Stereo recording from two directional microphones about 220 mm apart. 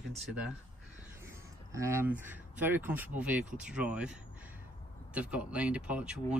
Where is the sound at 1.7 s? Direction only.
15° right (ahead or behind).